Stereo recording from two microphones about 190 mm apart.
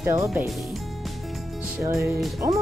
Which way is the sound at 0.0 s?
15° right (ahead or behind).